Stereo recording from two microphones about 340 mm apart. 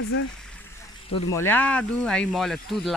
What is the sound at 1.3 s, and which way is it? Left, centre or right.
Speech, centre.